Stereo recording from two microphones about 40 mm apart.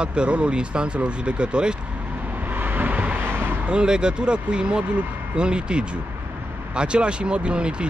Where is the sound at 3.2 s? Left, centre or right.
Right.